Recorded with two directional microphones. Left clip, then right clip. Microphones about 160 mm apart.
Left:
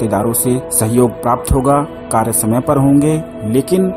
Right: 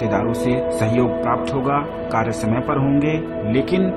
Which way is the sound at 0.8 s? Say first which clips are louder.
Left 4 dB; 45° left (ahead or behind).